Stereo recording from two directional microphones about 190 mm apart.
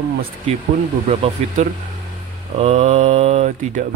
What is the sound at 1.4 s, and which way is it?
Speech, 35° right (ahead or behind).